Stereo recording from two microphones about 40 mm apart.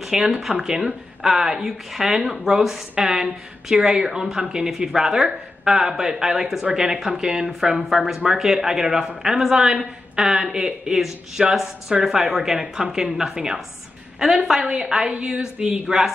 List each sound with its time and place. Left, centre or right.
0.0 s a man's voice: centre